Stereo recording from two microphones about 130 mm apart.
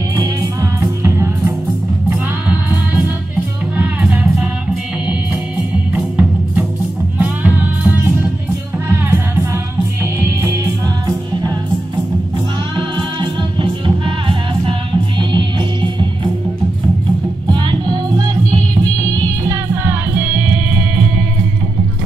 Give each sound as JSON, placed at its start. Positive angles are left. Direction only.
{"t": 0.1, "sound": "music", "side_deg": -25}
{"t": 2.0, "sound": "music", "side_deg": -10}
{"t": 5.9, "sound": "music", "side_deg": -10}
{"t": 12.7, "sound": "music", "side_deg": -40}
{"t": 17.5, "sound": "music", "side_deg": -35}